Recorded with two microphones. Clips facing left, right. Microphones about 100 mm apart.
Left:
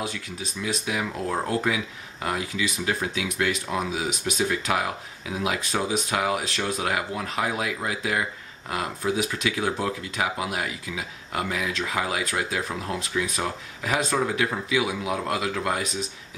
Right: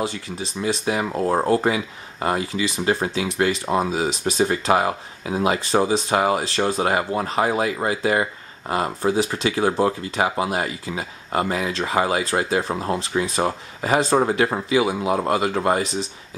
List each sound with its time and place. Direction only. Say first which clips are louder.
0.0 s speech: right 6 dB; 30° right (ahead or behind)